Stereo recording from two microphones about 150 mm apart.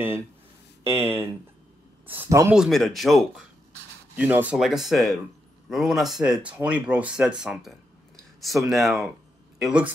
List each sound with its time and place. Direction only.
0.8 s speech: 15° right (ahead or behind)
2.5 s speech: centre (ahead or behind)
4.2 s speech: 10° right (ahead or behind)